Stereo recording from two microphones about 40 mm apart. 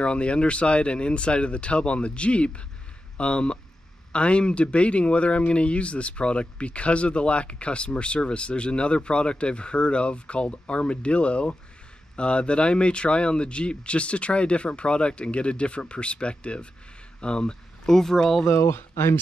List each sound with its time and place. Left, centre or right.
0.0 s speech: left; by 18.4 s centre
18.4 s speech: left